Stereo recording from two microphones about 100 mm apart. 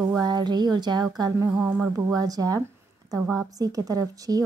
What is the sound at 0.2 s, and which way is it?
A woman's voice, 45° right (ahead or behind).